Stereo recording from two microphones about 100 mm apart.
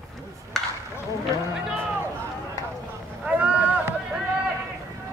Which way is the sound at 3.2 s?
15° right (ahead or behind).